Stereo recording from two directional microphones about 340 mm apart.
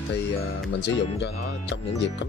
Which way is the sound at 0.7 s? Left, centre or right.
Left.